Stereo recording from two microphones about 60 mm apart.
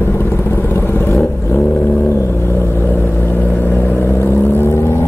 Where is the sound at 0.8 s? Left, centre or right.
Left.